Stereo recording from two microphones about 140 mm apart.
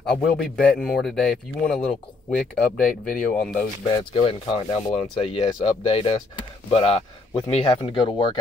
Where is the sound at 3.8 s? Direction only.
35° left (ahead or behind).